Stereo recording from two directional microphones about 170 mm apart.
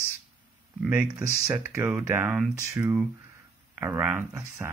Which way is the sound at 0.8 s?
10° right (ahead or behind).